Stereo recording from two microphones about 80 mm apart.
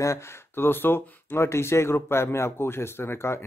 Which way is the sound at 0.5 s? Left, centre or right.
Left.